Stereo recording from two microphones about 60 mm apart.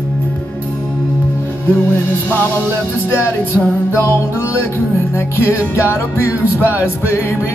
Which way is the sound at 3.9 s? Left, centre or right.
Left.